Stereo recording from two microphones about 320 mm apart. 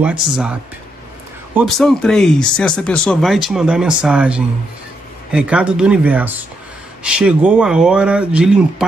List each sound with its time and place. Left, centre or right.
0.0 s speech: centre